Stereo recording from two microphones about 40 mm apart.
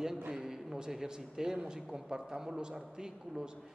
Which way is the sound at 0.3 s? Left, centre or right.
Centre.